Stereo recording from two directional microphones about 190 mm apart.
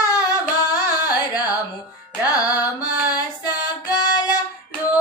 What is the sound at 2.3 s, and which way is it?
Music, 20° left (ahead or behind).